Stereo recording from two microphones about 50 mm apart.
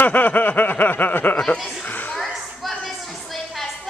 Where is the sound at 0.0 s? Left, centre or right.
Left.